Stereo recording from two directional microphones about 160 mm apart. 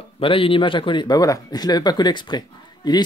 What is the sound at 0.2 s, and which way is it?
Speech, 35° left (ahead or behind).